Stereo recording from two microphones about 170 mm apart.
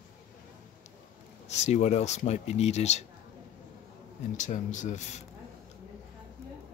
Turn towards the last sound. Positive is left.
turn(degrees=40)  # may be behind; listen again after turning